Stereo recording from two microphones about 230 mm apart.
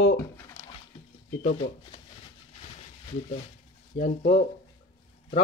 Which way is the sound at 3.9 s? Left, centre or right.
Left.